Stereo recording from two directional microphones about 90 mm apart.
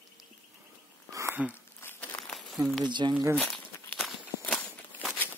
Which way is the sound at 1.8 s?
20° left (ahead or behind).